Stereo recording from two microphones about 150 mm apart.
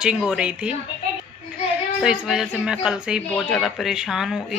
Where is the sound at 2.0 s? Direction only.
5° right (ahead or behind).